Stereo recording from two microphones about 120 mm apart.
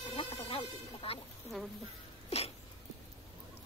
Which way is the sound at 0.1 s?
50° left (ahead or behind).